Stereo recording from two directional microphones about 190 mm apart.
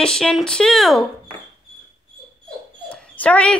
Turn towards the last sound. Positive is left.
turn(degrees=5)  # may be behind; listen again after turning